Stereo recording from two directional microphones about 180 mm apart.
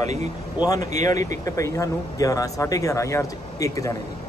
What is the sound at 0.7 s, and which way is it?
Speech, 20° left (ahead or behind).